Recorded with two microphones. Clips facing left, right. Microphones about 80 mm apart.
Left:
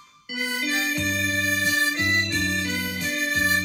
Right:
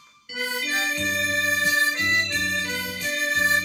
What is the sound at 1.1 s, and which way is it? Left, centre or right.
Music, centre.